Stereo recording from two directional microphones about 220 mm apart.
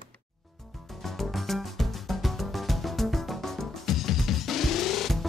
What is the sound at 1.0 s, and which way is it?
Music, centre (ahead or behind).